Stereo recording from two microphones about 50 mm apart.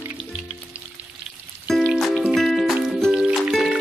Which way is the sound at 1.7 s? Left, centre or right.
Centre.